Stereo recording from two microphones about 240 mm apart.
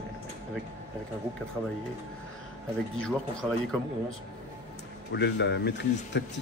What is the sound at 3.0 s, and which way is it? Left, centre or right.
Speech, centre.